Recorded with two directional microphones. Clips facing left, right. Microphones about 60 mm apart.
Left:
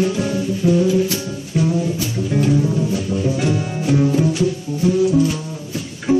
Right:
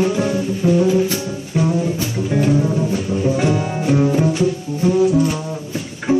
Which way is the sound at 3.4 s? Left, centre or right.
Right.